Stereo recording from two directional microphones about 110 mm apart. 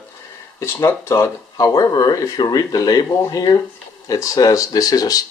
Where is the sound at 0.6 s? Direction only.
25° left (ahead or behind).